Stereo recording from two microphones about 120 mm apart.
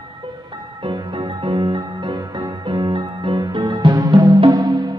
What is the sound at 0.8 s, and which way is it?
Music, 45° right (ahead or behind).